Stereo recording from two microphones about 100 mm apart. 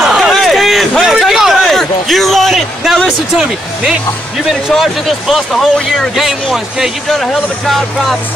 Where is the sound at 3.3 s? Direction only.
5° right (ahead or behind).